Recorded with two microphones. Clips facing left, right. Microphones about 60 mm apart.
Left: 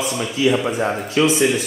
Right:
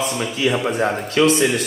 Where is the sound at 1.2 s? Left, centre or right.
Right.